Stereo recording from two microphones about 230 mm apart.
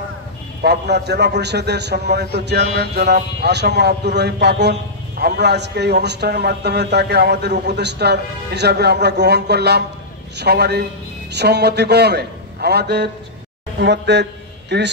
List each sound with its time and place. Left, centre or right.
0.6 s a man's voice: right